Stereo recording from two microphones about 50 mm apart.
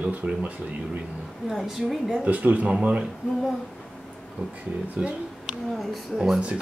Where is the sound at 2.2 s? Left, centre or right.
Right.